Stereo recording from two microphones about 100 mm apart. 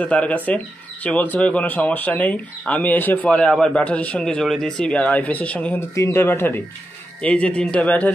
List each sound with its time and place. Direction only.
0.0 s speech: 15° left (ahead or behind)
5.8 s speech: 30° left (ahead or behind)
7.2 s speech: 10° left (ahead or behind)